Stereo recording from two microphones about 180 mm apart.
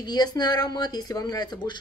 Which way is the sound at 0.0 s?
25° left (ahead or behind).